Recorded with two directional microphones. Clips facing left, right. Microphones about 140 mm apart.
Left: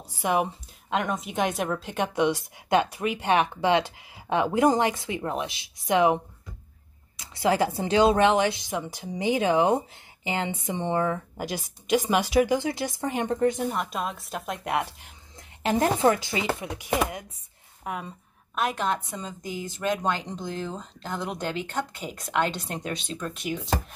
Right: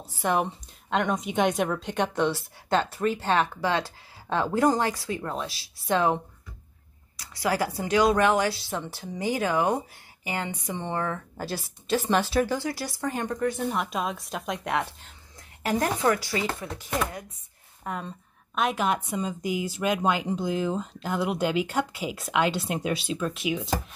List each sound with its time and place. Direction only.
0.0 s a woman's voice: 10° left (ahead or behind)
13.7 s a woman's voice: centre (ahead or behind)
19.0 s speech: 10° right (ahead or behind)